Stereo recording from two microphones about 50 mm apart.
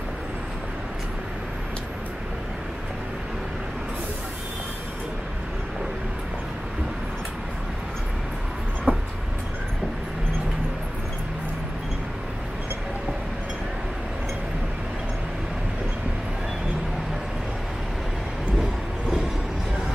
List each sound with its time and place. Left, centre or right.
8.9 s vehicle: right
18.6 s vehicle: centre